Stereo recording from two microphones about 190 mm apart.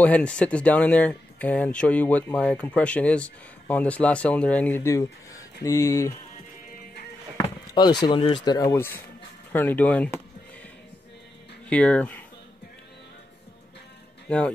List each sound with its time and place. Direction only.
0.0 s speech: 5° left (ahead or behind)
7.3 s a sound: 20° left (ahead or behind)
8.1 s speech: 30° left (ahead or behind); by 10.2 s 10° left (ahead or behind)
11.7 s speech: 5° left (ahead or behind)
14.3 s speech: 5° left (ahead or behind)